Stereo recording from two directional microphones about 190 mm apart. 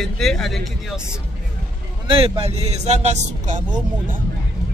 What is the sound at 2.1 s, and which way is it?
Speech, 30° right (ahead or behind).